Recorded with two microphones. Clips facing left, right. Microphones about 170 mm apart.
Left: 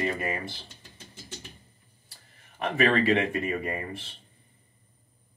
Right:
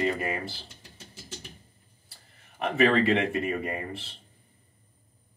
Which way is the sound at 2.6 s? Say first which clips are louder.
Right 1 dB; centre (ahead or behind).